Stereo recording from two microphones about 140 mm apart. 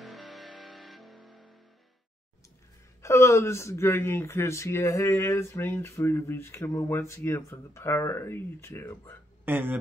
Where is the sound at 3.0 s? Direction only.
20° left (ahead or behind).